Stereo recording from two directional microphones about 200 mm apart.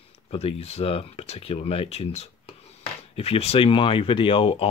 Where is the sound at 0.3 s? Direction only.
30° left (ahead or behind).